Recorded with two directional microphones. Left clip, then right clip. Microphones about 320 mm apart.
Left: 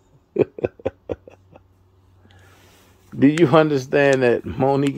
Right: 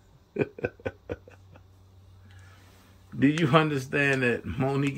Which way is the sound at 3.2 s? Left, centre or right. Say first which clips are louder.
Left 8 dB; centre.